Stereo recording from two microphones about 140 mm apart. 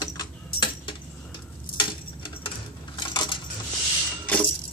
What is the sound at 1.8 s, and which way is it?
Cutlery, 35° left (ahead or behind).